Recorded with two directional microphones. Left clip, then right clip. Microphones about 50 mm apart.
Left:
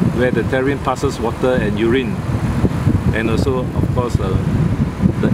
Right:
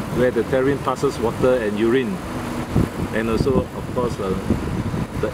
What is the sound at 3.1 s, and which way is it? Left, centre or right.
Speech, left.